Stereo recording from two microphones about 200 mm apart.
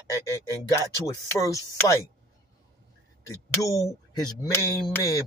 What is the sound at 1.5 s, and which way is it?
Speech, 15° left (ahead or behind).